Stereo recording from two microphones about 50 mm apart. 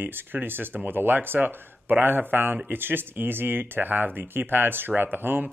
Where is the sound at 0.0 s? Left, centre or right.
Right.